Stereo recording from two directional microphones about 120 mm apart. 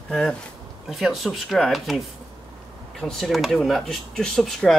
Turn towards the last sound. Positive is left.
turn(degrees=0)  # may be behind; listen again after turning